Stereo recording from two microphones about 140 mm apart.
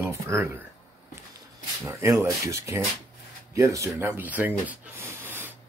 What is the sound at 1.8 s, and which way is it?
Speech, 20° right (ahead or behind).